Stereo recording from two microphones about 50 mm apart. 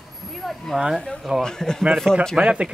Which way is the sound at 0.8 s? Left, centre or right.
Centre.